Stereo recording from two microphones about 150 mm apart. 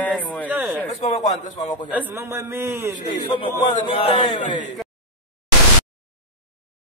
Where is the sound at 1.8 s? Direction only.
10° right (ahead or behind).